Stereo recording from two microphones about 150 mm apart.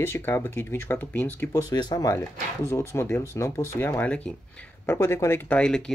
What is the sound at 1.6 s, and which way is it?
Speech, 25° left (ahead or behind).